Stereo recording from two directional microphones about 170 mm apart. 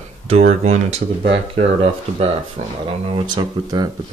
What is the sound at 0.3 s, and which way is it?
Speech, 40° right (ahead or behind).